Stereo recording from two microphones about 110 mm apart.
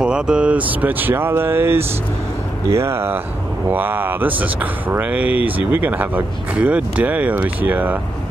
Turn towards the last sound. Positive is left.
turn(degrees=-15)  # may be behind; listen again after turning